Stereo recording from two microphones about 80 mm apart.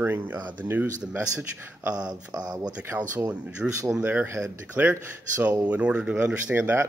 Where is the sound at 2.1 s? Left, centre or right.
Right.